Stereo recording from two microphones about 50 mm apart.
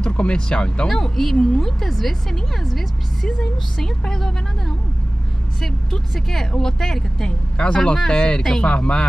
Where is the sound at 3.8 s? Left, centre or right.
Centre.